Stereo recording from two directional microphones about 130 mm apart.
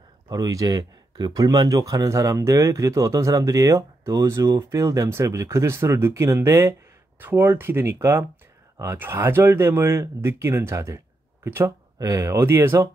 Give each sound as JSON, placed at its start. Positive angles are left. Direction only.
{"t": 0.3, "sound": "speech", "side_deg": -30}